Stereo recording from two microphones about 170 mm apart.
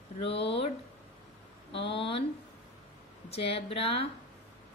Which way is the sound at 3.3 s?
35° left (ahead or behind).